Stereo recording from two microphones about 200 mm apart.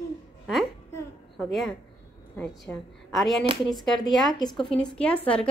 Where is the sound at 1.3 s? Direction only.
Centre (ahead or behind).